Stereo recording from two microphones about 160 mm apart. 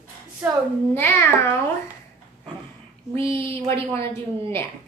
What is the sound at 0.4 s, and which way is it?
Speech, 10° right (ahead or behind).